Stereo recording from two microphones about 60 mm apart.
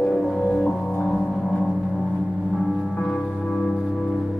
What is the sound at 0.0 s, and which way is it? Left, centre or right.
Music, centre.